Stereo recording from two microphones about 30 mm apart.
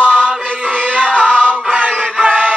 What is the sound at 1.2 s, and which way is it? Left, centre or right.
Music, right.